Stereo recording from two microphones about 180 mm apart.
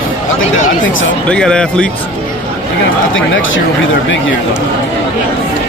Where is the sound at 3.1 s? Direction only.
90° left.